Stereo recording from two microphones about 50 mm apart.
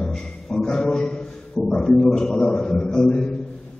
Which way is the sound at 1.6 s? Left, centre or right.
Centre.